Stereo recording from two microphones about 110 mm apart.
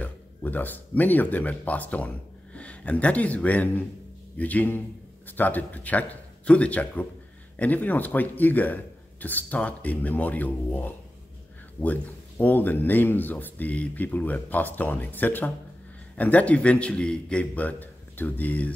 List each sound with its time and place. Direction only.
0.0 s speech: 15° left (ahead or behind)